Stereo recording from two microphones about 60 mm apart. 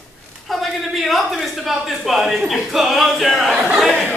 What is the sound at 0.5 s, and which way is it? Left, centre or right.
Speech, centre.